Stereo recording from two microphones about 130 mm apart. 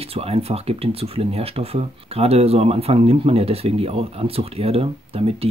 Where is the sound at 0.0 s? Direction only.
50° right (ahead or behind).